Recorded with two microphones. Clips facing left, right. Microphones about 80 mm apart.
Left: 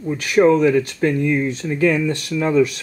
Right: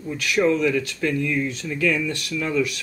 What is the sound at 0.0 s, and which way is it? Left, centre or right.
Speech, left.